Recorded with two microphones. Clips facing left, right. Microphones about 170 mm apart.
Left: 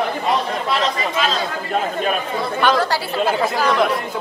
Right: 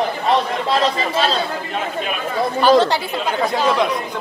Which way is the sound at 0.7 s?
35° right (ahead or behind).